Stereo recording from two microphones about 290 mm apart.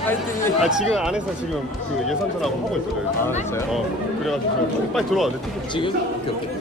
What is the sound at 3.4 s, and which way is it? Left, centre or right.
Speech, centre.